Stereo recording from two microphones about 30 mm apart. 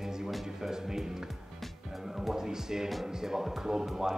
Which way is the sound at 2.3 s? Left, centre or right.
Centre.